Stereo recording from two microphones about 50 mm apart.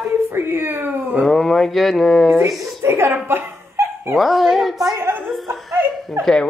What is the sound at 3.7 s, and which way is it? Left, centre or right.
Dog, right.